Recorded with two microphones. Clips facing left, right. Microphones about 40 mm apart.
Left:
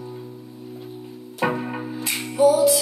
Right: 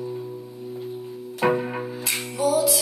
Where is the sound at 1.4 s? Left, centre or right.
Centre.